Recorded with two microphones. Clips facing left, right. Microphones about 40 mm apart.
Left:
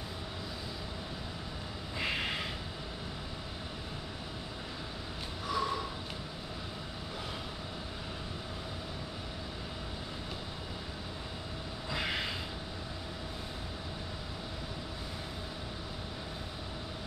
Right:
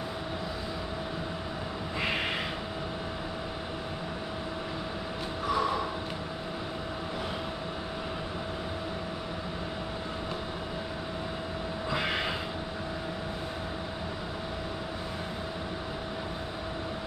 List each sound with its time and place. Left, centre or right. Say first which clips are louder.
2.0 s crow: right 4 dB; right
5.5 s a sound: right 5 dB; right
11.9 s gasp: right 4 dB; centre